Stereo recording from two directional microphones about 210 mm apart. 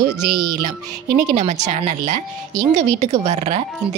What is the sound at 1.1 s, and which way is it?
A woman's voice, 35° right (ahead or behind).